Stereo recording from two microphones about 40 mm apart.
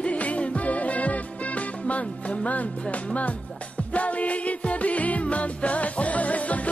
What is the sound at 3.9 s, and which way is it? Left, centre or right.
Music, left.